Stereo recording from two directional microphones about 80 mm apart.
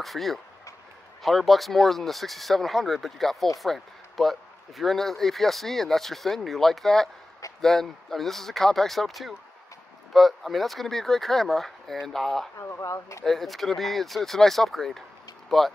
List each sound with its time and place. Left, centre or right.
0.0 s speech: centre
12.5 s speech: left
13.2 s speech: centre